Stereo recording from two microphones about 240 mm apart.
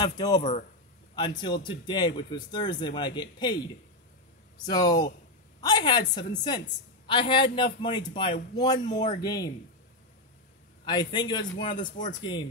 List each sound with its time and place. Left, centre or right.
0.0 s a man's voice: centre
0.4 s speech: left
1.1 s a man's voice: centre
10.9 s a man's voice: centre
11.7 s speech: left
12.2 s a man's voice: centre